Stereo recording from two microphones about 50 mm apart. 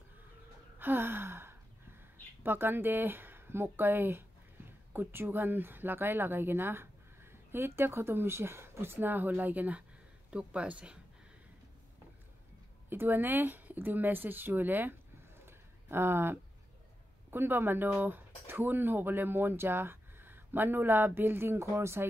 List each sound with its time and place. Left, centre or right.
0.7 s speech: right
10.3 s speech: right
12.9 s speech: right
15.4 s a sound: right
17.3 s speech: right